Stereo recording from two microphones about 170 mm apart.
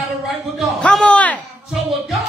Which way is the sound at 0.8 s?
5° left (ahead or behind).